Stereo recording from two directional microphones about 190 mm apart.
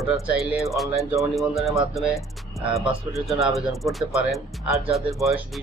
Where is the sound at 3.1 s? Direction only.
Centre (ahead or behind).